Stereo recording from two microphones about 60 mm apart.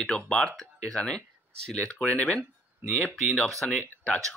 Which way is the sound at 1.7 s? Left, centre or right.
Centre.